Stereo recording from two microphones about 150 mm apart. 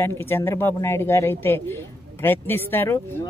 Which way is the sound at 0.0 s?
15° left (ahead or behind).